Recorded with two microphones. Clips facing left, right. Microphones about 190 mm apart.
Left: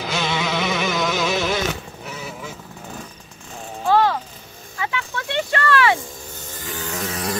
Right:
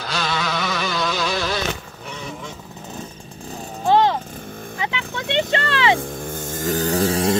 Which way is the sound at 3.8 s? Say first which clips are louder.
Right 1 dB; 20° right (ahead or behind).